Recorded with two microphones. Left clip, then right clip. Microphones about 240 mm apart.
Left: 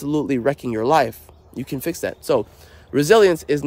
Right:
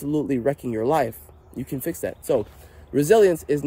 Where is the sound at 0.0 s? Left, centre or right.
Centre.